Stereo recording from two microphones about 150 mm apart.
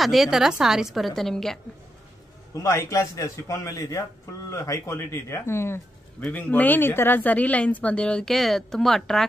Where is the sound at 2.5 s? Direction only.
20° left (ahead or behind).